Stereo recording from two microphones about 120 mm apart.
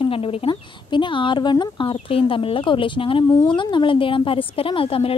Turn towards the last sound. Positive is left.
turn(degrees=50)  # may be behind; listen again after turning